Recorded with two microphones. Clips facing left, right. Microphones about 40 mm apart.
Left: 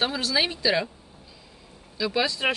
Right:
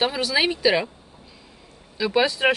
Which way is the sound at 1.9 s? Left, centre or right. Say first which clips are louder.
Right 4 dB; right.